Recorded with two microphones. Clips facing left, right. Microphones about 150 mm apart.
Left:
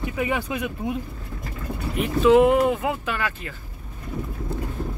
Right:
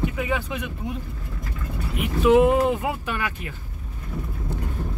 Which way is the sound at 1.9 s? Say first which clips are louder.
Left 1 dB; 15° right (ahead or behind).